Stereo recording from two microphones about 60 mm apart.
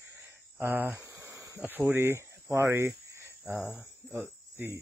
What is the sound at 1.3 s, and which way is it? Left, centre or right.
Insect, right.